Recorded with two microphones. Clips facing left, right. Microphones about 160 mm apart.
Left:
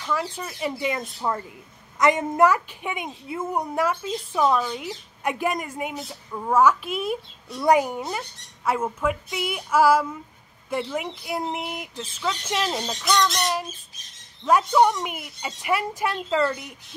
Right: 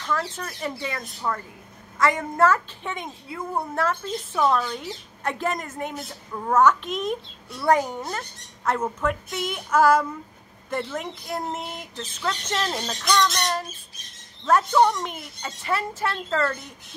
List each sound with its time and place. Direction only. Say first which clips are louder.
0.0 s speech: even; 10° left (ahead or behind)